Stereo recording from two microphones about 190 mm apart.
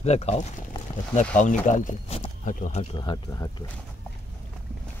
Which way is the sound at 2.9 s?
25° left (ahead or behind).